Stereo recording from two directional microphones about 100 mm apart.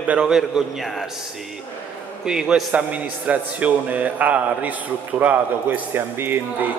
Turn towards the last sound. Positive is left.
turn(degrees=-20)  # may be behind; listen again after turning